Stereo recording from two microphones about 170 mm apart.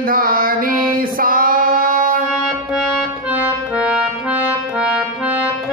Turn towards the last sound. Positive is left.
turn(degrees=-5)  # may be behind; listen again after turning